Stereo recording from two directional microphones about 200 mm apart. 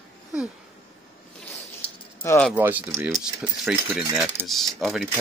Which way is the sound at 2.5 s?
10° right (ahead or behind).